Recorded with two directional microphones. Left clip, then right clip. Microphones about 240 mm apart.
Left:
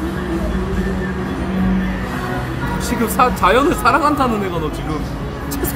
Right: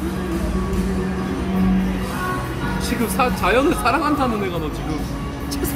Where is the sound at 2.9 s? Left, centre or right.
Centre.